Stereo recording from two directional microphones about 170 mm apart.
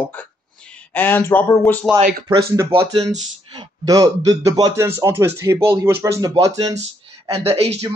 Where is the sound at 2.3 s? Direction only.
20° right (ahead or behind).